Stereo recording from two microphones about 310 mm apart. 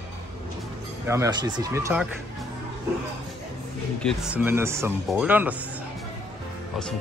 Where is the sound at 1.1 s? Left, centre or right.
Centre.